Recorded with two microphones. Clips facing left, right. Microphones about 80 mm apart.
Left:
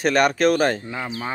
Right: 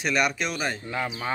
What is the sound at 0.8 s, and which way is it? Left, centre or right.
Speech, centre.